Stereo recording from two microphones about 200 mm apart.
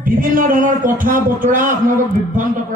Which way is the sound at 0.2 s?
40° right (ahead or behind).